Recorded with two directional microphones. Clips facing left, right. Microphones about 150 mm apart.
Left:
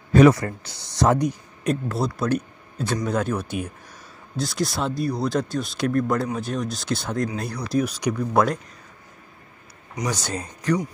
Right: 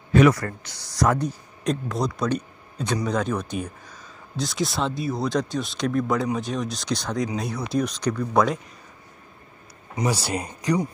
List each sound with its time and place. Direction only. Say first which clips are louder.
0.3 s speech: left 3 dB; 25° left (ahead or behind)
1.2 s speech: left 2 dB; 5° left (ahead or behind)
10.0 s speech: right 3 dB; 10° right (ahead or behind)